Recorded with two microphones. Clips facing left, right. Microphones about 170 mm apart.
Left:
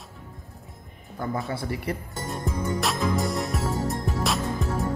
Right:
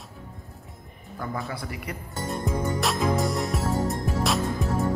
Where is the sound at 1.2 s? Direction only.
25° left (ahead or behind).